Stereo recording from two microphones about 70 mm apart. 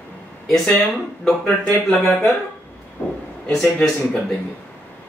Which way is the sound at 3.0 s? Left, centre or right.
Left.